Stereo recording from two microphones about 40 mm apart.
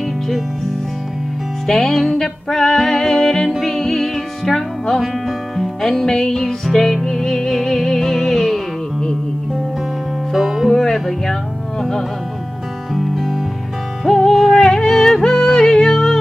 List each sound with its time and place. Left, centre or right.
1.7 s music: centre
10.3 s music: centre
10.7 s music: centre
12.9 s music: centre
14.6 s music: centre